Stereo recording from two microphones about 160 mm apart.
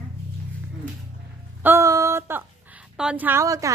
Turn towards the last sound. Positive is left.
turn(degrees=-20)  # may be behind; listen again after turning